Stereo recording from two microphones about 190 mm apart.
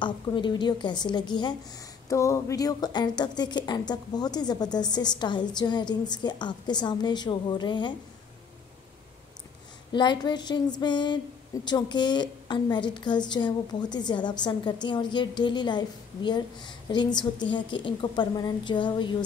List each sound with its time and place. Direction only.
0.0 s a woman's voice: 25° left (ahead or behind)
9.9 s a woman's voice: 25° left (ahead or behind)